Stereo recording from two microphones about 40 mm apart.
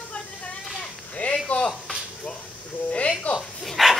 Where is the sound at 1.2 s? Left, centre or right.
Left.